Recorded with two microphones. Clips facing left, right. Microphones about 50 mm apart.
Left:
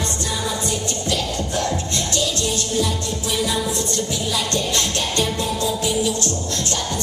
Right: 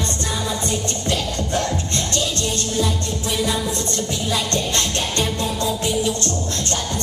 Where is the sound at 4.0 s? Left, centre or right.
Right.